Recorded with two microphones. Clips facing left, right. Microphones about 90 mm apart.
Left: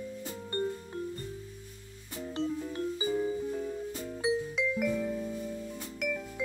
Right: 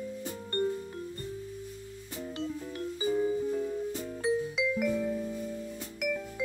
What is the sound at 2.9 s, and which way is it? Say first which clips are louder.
Music: right 4 dB; 10° left (ahead or behind).